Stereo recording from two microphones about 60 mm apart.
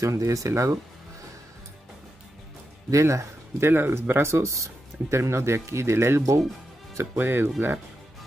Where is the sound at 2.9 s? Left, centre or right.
Right.